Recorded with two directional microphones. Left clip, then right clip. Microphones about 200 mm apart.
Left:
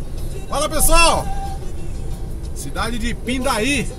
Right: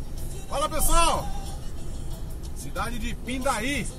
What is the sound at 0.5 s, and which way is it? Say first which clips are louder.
Speech: left 8 dB; 15° left (ahead or behind).